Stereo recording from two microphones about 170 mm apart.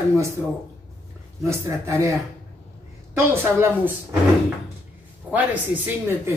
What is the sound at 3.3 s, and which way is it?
Speech, 15° right (ahead or behind).